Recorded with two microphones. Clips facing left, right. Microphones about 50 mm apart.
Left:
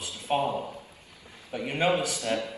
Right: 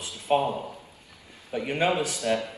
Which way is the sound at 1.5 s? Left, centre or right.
Right.